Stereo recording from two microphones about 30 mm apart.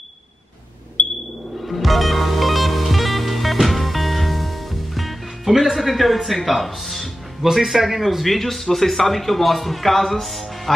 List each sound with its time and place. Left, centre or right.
1.0 s a sound: left
1.6 s music: centre
7.5 s a man's voice: centre